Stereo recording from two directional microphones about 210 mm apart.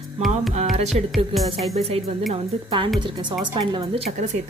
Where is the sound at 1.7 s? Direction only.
30° right (ahead or behind).